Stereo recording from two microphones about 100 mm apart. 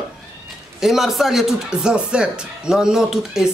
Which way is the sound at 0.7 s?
5° right (ahead or behind).